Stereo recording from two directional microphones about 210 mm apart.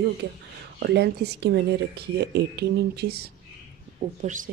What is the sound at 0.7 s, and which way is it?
Speech, 50° right (ahead or behind).